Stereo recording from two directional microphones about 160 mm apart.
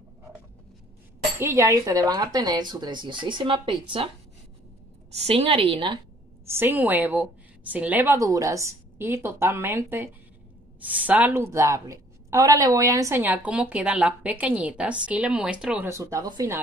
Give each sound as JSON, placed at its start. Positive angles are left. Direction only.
{"t": 1.4, "sound": "speech", "side_deg": -20}
{"t": 5.1, "sound": "a woman's voice", "side_deg": -40}
{"t": 6.4, "sound": "a woman's voice", "side_deg": -15}
{"t": 15.9, "sound": "speech", "side_deg": -20}